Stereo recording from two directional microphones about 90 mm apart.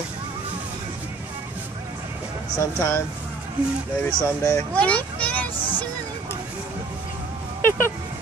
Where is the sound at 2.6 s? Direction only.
35° left (ahead or behind).